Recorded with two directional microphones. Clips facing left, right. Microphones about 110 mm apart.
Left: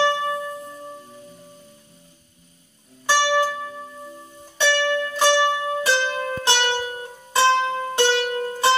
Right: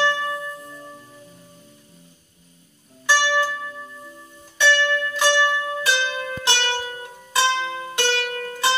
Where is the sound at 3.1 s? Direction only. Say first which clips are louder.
Left 1 dB; 25° left (ahead or behind).